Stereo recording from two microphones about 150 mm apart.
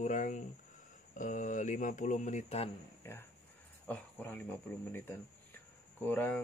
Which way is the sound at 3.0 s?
15° left (ahead or behind).